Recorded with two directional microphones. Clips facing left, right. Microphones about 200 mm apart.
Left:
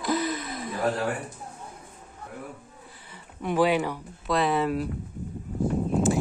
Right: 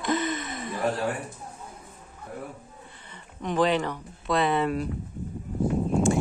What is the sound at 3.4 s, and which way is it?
A woman's voice, 10° left (ahead or behind).